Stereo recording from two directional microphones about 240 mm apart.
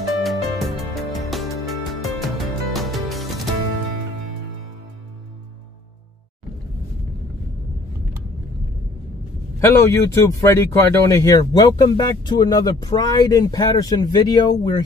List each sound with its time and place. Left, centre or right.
0.1 s music: centre
9.6 s speech: centre